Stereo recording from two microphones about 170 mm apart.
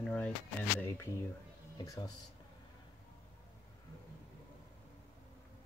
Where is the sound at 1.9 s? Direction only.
20° left (ahead or behind).